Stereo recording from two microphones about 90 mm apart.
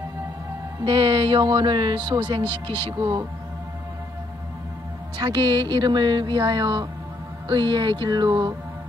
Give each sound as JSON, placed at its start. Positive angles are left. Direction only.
{"t": 0.8, "sound": "speech", "side_deg": -55}
{"t": 2.4, "sound": "speech", "side_deg": 25}
{"t": 3.0, "sound": "speech", "side_deg": -45}
{"t": 5.1, "sound": "speech", "side_deg": -55}